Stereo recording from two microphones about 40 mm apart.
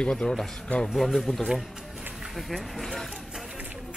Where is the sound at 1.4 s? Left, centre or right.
Centre.